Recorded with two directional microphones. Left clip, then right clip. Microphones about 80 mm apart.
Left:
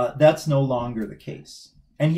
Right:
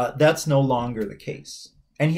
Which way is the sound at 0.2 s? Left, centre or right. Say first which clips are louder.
Left 1 dB; right.